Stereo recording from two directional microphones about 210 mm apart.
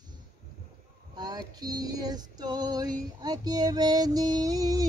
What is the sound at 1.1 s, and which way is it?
Female singing, 20° right (ahead or behind).